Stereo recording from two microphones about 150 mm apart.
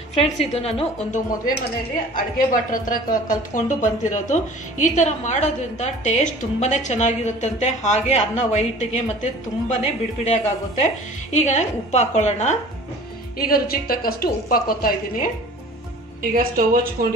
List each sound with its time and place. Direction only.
0.1 s a woman's voice: 45° left (ahead or behind)
2.1 s a woman's voice: 65° left (ahead or behind); by 12.5 s 50° left (ahead or behind)
13.4 s a woman's voice: 80° left
16.2 s a woman's voice: 75° right (ahead or behind)